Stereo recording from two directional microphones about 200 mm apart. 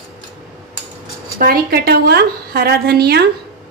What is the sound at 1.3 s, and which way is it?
A woman's voice, 50° right (ahead or behind).